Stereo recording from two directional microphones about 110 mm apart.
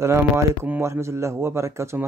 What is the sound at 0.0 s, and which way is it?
Speech, 25° right (ahead or behind).